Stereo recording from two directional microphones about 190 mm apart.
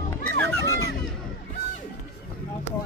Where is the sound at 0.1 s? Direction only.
15° left (ahead or behind).